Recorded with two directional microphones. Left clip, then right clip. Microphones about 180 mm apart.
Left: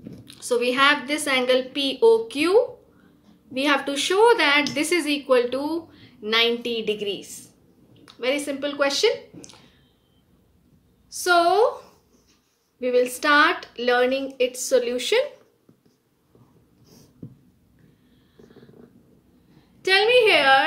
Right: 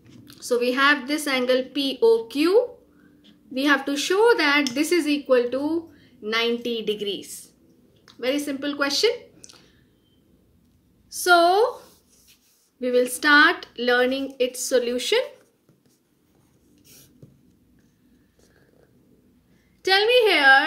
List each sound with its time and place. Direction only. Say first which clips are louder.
0.3 s a woman's voice: even; 15° right (ahead or behind)
6.7 s a woman's voice: left 1 dB; 20° right (ahead or behind)
8.0 s speech: left 1 dB; 15° right (ahead or behind)
11.1 s a woman's voice: right 2 dB; 25° right (ahead or behind)
12.8 s a woman's voice: even; 25° right (ahead or behind)
19.8 s a woman's voice: left 1 dB; 20° right (ahead or behind)